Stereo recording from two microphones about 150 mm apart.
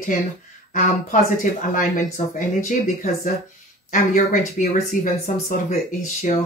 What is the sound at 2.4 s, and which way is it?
Speech, 60° left (ahead or behind).